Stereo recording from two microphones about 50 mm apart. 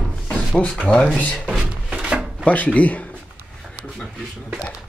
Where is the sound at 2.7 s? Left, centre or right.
Left.